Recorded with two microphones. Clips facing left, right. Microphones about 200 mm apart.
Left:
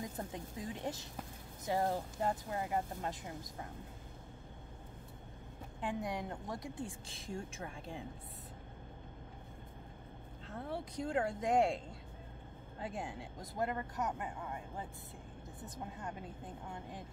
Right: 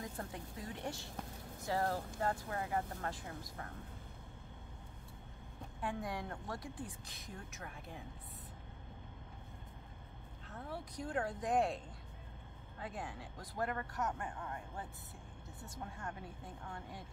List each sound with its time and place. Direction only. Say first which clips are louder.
0.0 s a woman's voice: left 2 dB; 20° left (ahead or behind)
5.8 s a woman's voice: left 2 dB; 20° left (ahead or behind)
10.7 s a woman's voice: left 4 dB; 25° left (ahead or behind)
12.8 s a woman's voice: left 3 dB; 25° left (ahead or behind)